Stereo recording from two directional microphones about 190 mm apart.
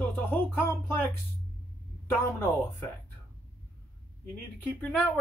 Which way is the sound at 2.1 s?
10° left (ahead or behind).